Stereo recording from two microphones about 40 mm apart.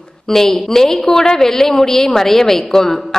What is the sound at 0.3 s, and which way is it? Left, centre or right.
A woman's voice, centre.